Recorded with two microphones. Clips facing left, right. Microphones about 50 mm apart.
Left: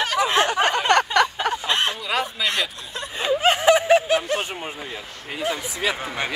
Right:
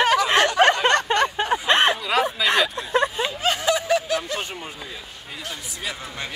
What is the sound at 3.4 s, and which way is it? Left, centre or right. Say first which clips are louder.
Snicker: left 6 dB; left.